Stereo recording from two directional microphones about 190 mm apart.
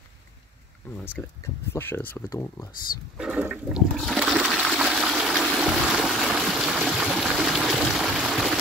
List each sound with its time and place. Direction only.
0.9 s speech: 10° left (ahead or behind)
3.2 s toilet flush: 5° right (ahead or behind)